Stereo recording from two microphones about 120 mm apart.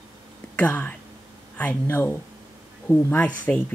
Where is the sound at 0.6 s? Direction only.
10° left (ahead or behind).